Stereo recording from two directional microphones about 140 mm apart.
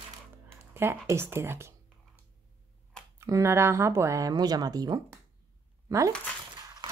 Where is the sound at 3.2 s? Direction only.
20° right (ahead or behind).